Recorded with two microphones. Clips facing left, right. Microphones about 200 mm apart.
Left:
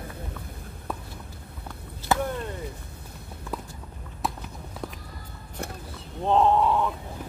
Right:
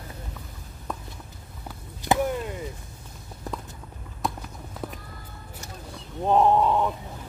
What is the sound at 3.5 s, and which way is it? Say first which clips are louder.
Clip-clop: even; 40° right (ahead or behind).